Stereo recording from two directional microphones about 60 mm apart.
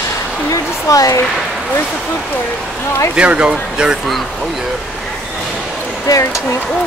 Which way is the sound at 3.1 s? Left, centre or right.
Centre.